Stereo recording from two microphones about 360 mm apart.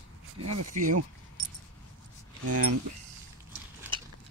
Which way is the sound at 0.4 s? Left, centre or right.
Right.